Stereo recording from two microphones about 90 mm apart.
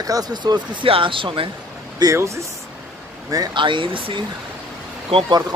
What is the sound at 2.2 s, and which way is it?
Speech, 35° right (ahead or behind).